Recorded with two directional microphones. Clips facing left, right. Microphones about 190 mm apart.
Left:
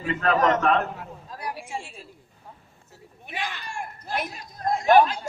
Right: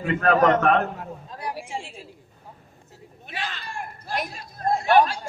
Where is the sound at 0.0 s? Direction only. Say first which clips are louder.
Right 3 dB; 50° right (ahead or behind).